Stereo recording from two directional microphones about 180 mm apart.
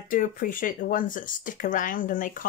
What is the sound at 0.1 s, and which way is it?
Speech, 50° left (ahead or behind).